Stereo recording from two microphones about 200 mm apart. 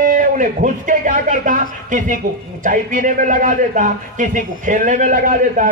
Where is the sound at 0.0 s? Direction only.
40° right (ahead or behind).